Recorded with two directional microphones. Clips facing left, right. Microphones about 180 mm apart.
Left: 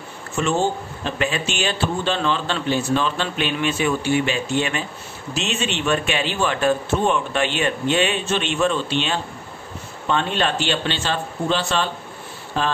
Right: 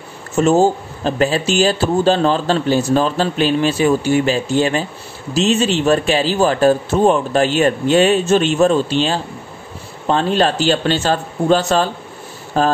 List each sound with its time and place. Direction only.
0.4 s a man's voice: 40° right (ahead or behind)